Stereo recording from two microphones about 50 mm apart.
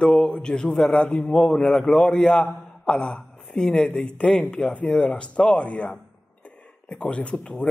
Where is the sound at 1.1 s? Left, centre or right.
Centre.